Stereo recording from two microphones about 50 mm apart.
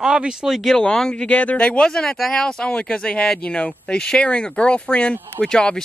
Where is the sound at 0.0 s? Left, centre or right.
Centre.